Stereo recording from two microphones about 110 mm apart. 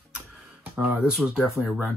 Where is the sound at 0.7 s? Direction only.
15° right (ahead or behind).